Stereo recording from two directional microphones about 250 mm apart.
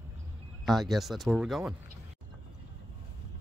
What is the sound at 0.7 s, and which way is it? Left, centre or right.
Speech, centre.